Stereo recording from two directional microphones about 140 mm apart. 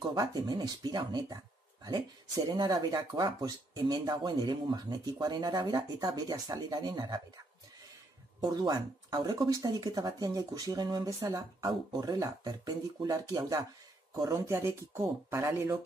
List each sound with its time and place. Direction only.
0.0 s speech: 25° right (ahead or behind)
8.4 s speech: 30° right (ahead or behind)